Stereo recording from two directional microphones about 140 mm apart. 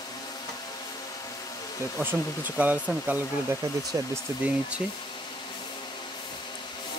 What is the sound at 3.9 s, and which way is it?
Speech, 25° right (ahead or behind).